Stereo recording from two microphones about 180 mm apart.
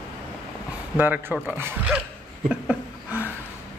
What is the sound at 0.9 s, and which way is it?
Speech, 10° right (ahead or behind).